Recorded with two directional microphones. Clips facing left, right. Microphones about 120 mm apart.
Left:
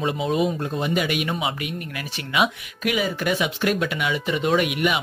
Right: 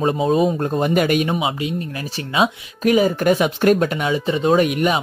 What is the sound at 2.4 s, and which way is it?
Speech, 40° right (ahead or behind).